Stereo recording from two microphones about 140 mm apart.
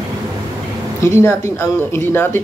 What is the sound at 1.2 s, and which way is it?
Speech, 20° left (ahead or behind).